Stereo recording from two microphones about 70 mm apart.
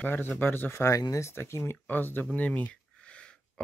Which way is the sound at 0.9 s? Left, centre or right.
Left.